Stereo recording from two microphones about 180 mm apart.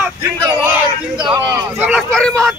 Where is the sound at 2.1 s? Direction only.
5° left (ahead or behind).